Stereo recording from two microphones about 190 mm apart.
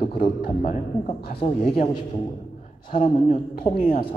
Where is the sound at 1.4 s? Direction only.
30° left (ahead or behind).